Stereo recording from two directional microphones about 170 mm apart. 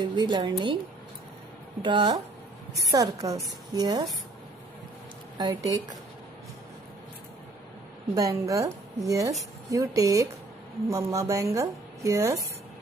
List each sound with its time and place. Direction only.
0.0 s a woman's voice: 25° right (ahead or behind)
1.8 s a woman's voice: 25° right (ahead or behind)
5.4 s a woman's voice: 20° right (ahead or behind)
8.1 s a woman's voice: 20° right (ahead or behind)